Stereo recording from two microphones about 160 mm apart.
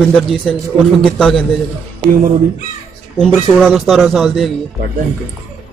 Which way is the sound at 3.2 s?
5° left (ahead or behind).